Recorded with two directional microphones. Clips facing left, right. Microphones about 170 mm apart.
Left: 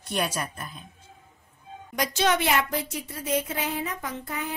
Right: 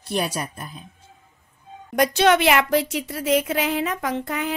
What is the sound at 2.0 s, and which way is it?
A woman's voice, 70° right (ahead or behind).